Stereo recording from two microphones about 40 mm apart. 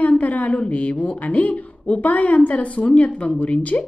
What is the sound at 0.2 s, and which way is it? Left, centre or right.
A woman's voice, left.